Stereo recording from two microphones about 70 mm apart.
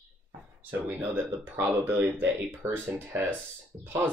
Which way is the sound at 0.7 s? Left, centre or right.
Right.